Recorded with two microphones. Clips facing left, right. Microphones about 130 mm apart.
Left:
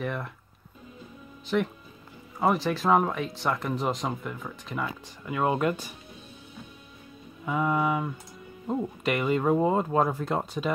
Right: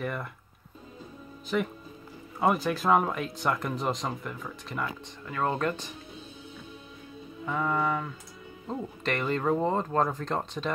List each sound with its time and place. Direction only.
0.0 s speech: centre (ahead or behind)
1.5 s speech: centre (ahead or behind)
7.4 s speech: 10° left (ahead or behind)